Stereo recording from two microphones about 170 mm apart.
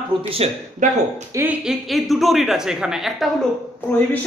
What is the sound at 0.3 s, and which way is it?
Speech, 40° right (ahead or behind).